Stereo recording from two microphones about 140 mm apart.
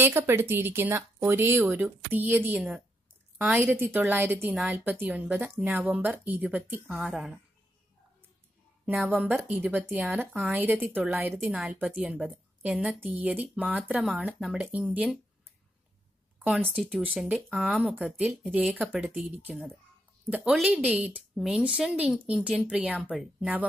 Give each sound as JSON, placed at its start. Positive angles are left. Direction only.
{"t": 0.0, "sound": "speech", "side_deg": -15}
{"t": 8.8, "sound": "speech", "side_deg": -15}
{"t": 16.6, "sound": "speech", "side_deg": 5}
{"t": 17.0, "sound": "speech", "side_deg": -5}
{"t": 19.5, "sound": "speech", "side_deg": 5}
{"t": 20.2, "sound": "speech", "side_deg": -5}